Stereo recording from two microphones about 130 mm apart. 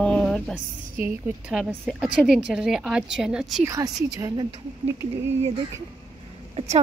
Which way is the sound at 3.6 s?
25° right (ahead or behind).